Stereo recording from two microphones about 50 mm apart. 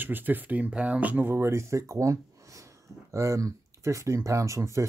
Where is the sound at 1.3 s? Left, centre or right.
Right.